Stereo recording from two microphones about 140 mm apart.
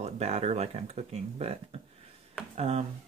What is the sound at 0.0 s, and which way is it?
Speech, 50° right (ahead or behind).